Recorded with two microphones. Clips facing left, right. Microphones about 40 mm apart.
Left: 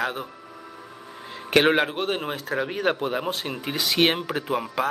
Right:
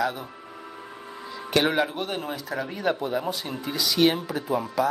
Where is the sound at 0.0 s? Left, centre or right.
Left.